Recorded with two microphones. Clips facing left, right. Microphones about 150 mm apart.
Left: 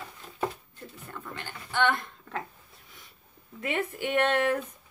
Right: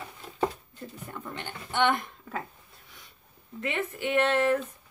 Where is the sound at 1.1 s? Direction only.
20° right (ahead or behind).